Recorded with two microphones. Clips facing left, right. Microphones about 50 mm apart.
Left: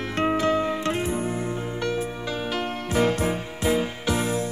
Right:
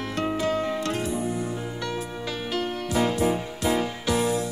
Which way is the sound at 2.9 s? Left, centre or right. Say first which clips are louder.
Left 1 dB; left.